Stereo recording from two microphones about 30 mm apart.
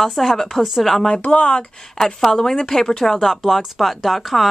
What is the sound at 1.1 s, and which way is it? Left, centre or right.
Speech, left.